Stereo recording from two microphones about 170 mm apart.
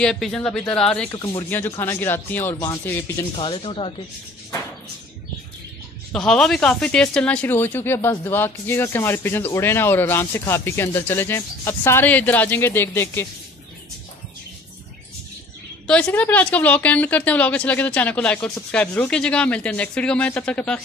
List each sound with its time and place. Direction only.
0.0 s speech: 5° left (ahead or behind)
1.1 s speech: 25° left (ahead or behind)
1.5 s speech: 15° left (ahead or behind)
3.3 s speech: 35° left (ahead or behind)
6.1 s speech: 5° left (ahead or behind)
15.9 s speech: 10° left (ahead or behind)